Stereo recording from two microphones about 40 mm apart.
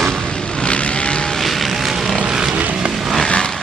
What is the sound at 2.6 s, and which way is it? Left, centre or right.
Vehicle, right.